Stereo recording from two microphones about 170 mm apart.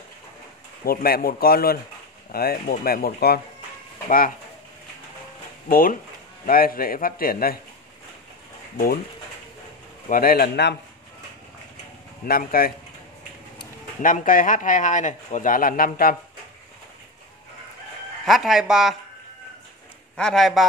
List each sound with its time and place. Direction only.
0.8 s a man's voice: 60° left (ahead or behind)
5.7 s a man's voice: 55° left (ahead or behind)
10.0 s a man's voice: 55° left (ahead or behind); by 10.8 s 75° left (ahead or behind)
12.3 s a man's voice: 60° left (ahead or behind)
14.0 s speech: 50° left (ahead or behind)
18.2 s speech: centre (ahead or behind)
20.2 s speech: centre (ahead or behind)